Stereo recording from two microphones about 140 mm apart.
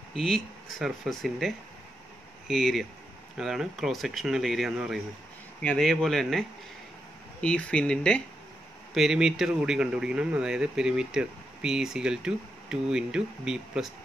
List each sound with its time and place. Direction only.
0.1 s speech: centre (ahead or behind)
7.4 s speech: 10° left (ahead or behind)